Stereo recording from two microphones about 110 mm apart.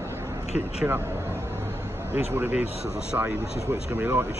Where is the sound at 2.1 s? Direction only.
20° right (ahead or behind).